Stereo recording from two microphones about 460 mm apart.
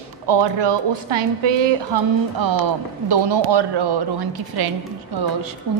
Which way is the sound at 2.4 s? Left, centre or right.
Right.